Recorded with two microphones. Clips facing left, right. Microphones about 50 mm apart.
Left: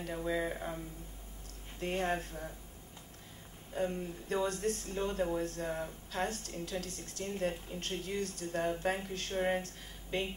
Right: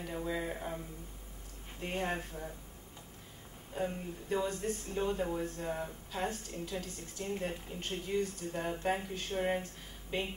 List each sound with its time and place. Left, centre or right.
0.0 s speech: centre
1.8 s a woman's voice: centre
3.7 s a woman's voice: centre